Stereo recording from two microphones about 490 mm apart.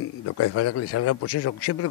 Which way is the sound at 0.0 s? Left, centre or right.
Left.